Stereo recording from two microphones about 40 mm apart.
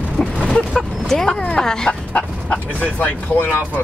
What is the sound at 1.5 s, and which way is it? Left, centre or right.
Speech, centre.